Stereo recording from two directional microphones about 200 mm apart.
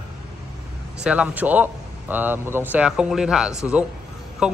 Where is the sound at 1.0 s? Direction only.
5° right (ahead or behind).